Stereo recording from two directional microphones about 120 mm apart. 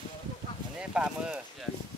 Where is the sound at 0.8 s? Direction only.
10° right (ahead or behind).